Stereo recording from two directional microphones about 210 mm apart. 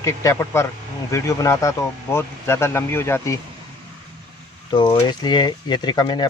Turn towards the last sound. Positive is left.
turn(degrees=20)  # may be behind; listen again after turning